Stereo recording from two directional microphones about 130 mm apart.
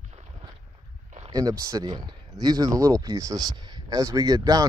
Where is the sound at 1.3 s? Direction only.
30° right (ahead or behind).